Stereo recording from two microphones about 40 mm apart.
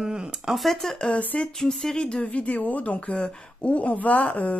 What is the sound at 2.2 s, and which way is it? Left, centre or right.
Speech, left.